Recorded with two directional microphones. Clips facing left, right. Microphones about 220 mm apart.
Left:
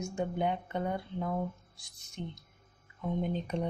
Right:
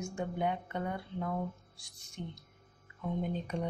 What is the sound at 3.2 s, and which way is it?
Speech, 20° left (ahead or behind).